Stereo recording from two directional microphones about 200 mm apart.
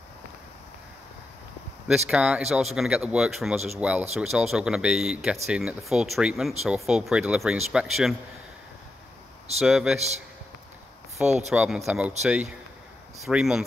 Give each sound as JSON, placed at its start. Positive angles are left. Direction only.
{"t": 2.0, "sound": "speech", "side_deg": -5}
{"t": 9.6, "sound": "speech", "side_deg": -5}
{"t": 11.2, "sound": "speech", "side_deg": -35}
{"t": 11.5, "sound": "speech", "side_deg": -5}